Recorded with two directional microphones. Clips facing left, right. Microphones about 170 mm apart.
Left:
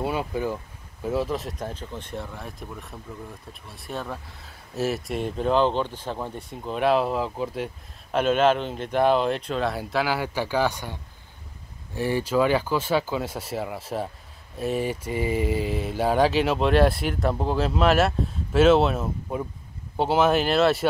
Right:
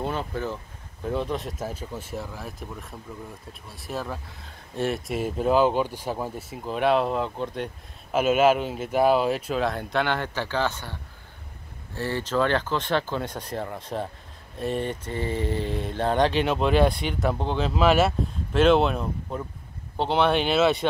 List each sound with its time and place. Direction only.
0.0 s speech: 10° left (ahead or behind)